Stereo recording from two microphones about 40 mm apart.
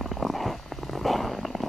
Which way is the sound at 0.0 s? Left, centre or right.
Centre.